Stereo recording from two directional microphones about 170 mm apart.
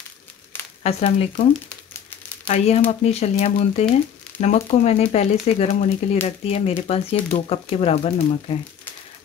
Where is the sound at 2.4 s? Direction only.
40° left (ahead or behind).